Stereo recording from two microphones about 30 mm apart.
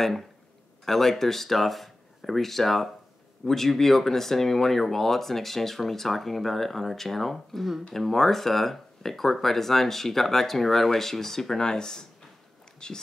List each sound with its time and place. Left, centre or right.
0.0 s speech: centre; by 13.0 s left